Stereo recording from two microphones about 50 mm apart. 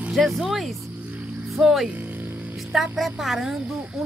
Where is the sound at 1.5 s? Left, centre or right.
Centre.